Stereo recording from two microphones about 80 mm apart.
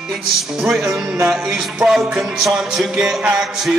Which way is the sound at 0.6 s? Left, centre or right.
Centre.